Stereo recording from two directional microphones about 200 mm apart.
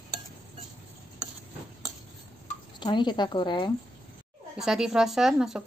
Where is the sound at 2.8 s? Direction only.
20° left (ahead or behind).